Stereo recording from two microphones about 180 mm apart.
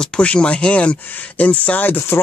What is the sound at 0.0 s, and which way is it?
Speech, 5° left (ahead or behind).